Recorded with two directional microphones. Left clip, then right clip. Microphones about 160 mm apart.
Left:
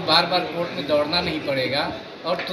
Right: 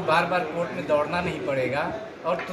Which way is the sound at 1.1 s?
15° right (ahead or behind).